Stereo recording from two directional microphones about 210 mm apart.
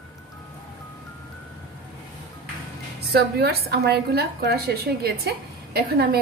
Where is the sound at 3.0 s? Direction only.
50° right (ahead or behind).